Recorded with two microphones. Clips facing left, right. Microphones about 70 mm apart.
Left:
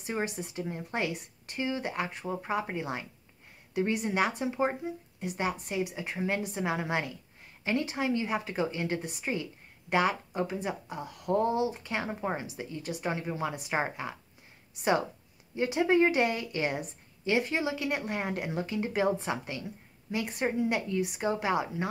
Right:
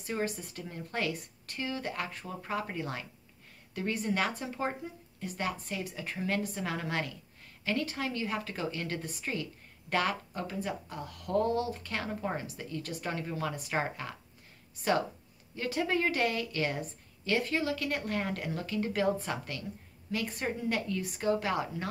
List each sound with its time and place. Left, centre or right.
0.0 s a woman's voice: centre
15.5 s a woman's voice: left